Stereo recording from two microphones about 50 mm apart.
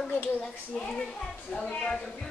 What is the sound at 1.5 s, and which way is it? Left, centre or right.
Speech, left.